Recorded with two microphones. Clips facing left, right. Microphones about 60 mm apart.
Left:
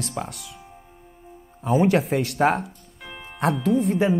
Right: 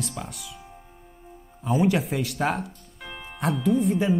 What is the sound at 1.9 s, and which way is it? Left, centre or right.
Speech, left.